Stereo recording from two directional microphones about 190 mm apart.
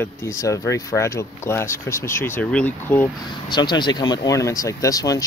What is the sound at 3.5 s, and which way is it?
Speech, 25° left (ahead or behind).